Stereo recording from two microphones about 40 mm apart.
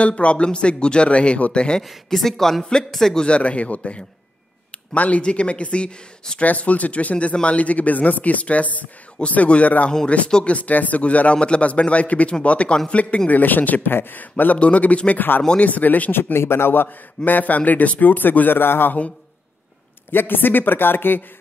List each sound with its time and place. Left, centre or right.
0.0 s a man's voice: left
2.0 s speech: centre
3.3 s speech: left
5.2 s a man's voice: left
6.4 s a man's voice: left
12.9 s speech: left
13.3 s a man's voice: left
15.1 s a man's voice: left
15.6 s a man's voice: left
16.3 s a man's voice: left
17.2 s a man's voice: left
18.6 s a man's voice: left
20.1 s a man's voice: left